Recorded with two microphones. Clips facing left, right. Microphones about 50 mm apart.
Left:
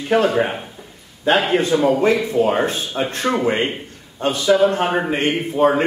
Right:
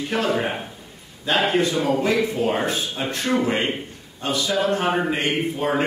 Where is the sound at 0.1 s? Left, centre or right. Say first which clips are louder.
Left 7 dB; left.